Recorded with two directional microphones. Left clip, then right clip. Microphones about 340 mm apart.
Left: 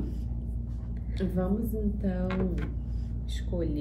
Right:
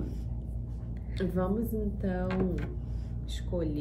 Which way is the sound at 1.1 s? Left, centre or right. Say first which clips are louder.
Even; centre.